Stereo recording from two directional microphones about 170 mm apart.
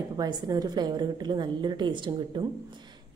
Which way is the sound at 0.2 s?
25° right (ahead or behind).